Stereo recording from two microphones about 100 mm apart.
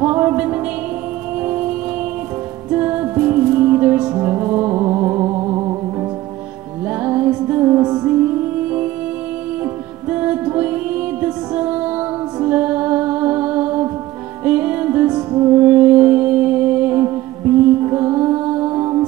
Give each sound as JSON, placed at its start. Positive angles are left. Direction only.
{"t": 0.0, "sound": "music", "side_deg": -20}
{"t": 2.7, "sound": "music", "side_deg": -20}
{"t": 10.0, "sound": "music", "side_deg": -20}
{"t": 17.8, "sound": "music", "side_deg": -25}